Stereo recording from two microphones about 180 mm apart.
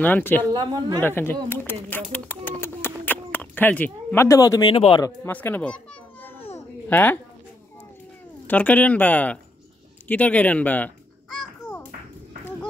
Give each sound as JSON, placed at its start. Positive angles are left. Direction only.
{"t": 0.0, "sound": "speech", "side_deg": 10}
{"t": 0.5, "sound": "speech", "side_deg": -25}
{"t": 1.0, "sound": "speech", "side_deg": 10}
{"t": 5.0, "sound": "speech", "side_deg": 10}
{"t": 6.2, "sound": "babbling", "side_deg": 10}
{"t": 8.5, "sound": "speech", "side_deg": 10}